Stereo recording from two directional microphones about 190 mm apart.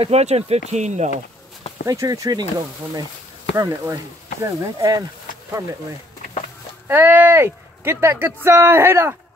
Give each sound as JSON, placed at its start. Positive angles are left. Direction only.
{"t": 0.0, "sound": "speech", "side_deg": -35}
{"t": 1.9, "sound": "speech", "side_deg": -20}
{"t": 3.5, "sound": "speech", "side_deg": -15}
{"t": 6.9, "sound": "speech", "side_deg": -10}